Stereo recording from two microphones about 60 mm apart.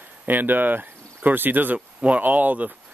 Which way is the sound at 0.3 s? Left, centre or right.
Right.